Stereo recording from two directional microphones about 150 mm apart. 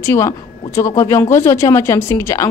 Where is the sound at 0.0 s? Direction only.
20° left (ahead or behind).